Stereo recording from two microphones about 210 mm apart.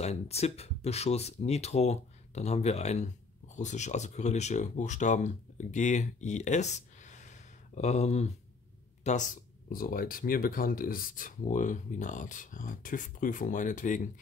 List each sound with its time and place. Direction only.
0.0 s speech: 30° left (ahead or behind)